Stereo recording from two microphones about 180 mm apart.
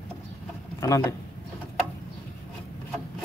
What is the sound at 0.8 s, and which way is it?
Speech, 15° left (ahead or behind).